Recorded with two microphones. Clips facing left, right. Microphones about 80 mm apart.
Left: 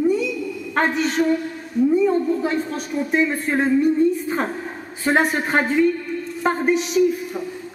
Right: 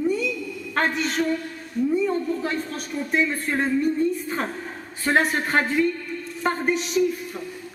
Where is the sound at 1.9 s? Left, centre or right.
Centre.